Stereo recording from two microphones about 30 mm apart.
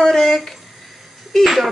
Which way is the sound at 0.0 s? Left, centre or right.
Centre.